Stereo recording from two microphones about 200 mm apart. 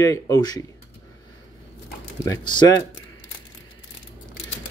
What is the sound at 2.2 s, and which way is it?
Speech, 20° left (ahead or behind).